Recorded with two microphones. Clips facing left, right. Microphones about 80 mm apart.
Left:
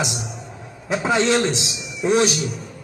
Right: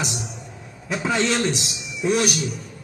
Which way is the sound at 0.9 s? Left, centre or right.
Left.